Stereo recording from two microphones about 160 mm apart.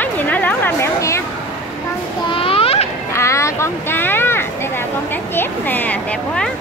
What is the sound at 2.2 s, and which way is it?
Children playing, 35° left (ahead or behind).